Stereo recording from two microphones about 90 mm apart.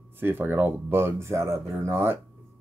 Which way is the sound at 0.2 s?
25° right (ahead or behind).